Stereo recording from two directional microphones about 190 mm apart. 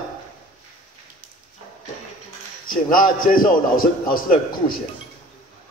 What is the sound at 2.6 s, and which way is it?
A man's voice, 50° left (ahead or behind).